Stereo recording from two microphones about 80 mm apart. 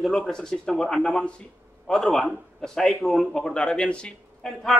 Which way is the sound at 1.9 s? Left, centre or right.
Centre.